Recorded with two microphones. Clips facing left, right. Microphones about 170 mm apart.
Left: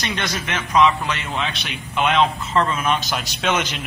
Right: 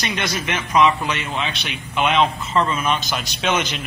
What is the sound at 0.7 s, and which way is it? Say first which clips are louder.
A man's voice: even; 5° right (ahead or behind).